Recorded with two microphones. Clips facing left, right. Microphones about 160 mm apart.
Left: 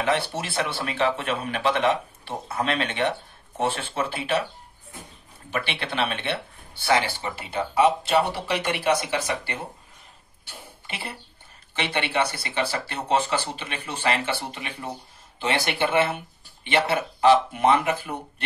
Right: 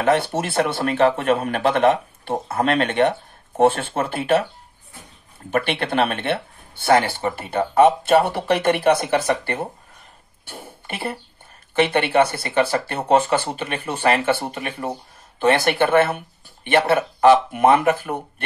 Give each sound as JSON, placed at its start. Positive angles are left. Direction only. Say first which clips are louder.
{"t": 0.0, "sound": "speech", "louder": "right 6 dB", "side_deg": -50}
{"t": 5.5, "sound": "speech", "louder": "right 8 dB", "side_deg": -50}